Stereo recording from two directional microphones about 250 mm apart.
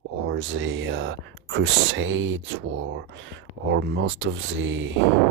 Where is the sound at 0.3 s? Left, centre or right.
Right.